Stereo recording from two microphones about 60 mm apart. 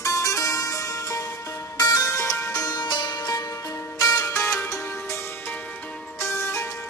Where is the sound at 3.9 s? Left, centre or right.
Left.